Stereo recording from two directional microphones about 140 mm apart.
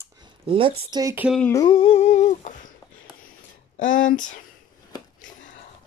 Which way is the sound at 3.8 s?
70° left (ahead or behind).